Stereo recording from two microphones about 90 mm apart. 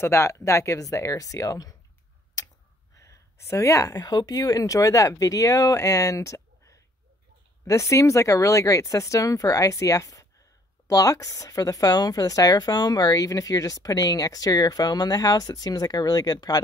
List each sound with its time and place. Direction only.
0.0 s speech: 30° left (ahead or behind)